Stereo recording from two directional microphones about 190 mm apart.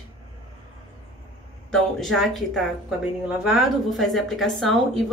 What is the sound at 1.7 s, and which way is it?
A woman's voice, centre (ahead or behind).